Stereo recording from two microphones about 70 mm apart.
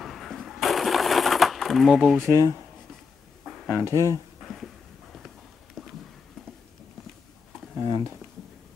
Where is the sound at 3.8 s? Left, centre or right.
Right.